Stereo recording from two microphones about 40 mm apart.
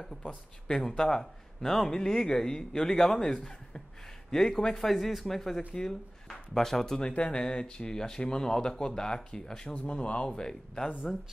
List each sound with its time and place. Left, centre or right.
0.7 s speech: centre
4.7 s speech: centre
7.1 s speech: left
9.8 s speech: left
10.3 s speech: centre